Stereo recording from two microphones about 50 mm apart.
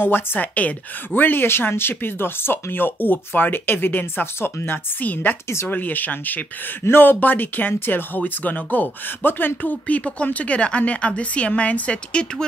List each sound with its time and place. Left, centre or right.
0.0 s a woman's voice: left
5.0 s speech: left